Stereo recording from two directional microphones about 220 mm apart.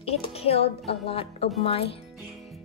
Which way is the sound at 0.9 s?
25° left (ahead or behind).